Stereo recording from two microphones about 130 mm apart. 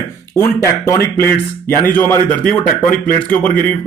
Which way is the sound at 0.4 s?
20° left (ahead or behind).